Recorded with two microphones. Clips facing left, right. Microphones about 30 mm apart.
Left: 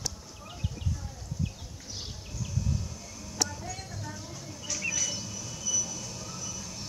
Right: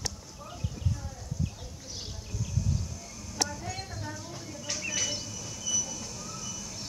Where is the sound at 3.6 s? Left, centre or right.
Right.